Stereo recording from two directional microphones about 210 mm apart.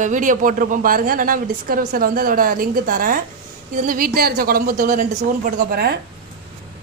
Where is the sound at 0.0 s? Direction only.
40° right (ahead or behind).